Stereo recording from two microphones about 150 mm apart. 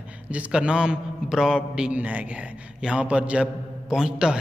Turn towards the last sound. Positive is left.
turn(degrees=-5)  # may be behind; listen again after turning